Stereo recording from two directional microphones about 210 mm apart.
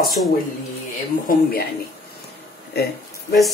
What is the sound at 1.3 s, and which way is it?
Speech, 45° left (ahead or behind).